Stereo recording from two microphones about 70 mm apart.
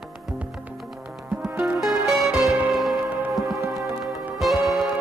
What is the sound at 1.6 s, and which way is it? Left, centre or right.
Music, centre.